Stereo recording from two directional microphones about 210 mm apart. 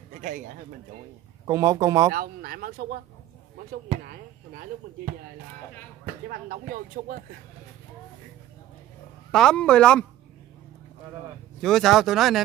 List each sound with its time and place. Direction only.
1.5 s speech: 15° right (ahead or behind)
2.1 s speech: 45° right (ahead or behind)
4.0 s speech: 45° right (ahead or behind)
6.2 s speech: 45° right (ahead or behind)
9.3 s speech: 5° left (ahead or behind)
11.6 s speech: centre (ahead or behind)